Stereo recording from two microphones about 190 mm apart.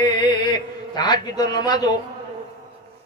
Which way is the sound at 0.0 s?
25° left (ahead or behind).